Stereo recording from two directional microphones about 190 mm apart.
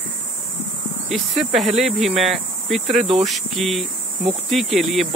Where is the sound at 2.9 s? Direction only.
35° right (ahead or behind).